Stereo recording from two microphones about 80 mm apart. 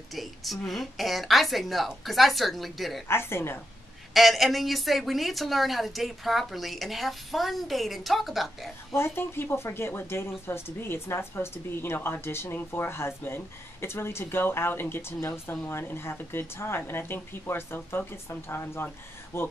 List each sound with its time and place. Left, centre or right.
0.1 s a woman's voice: centre
3.1 s speech: left
4.1 s a woman's voice: centre
8.9 s a woman's voice: left